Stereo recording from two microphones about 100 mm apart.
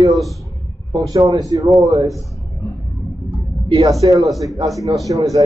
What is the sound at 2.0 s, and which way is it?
Speech, centre (ahead or behind).